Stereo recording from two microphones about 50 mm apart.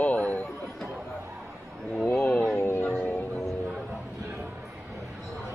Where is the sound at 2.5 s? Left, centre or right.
Left.